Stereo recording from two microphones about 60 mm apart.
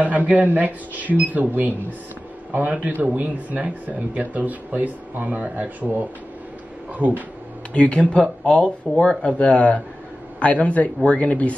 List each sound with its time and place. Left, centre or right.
0.0 s speech: right
7.7 s speech: centre